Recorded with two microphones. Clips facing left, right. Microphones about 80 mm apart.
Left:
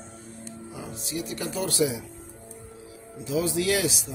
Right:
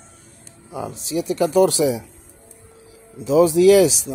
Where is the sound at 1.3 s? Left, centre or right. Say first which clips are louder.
Right 16 dB; right.